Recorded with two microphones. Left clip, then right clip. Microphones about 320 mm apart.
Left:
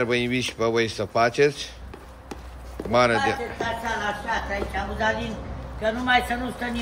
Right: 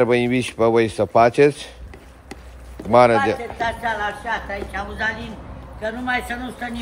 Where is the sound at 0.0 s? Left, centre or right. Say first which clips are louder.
Right 6 dB; centre.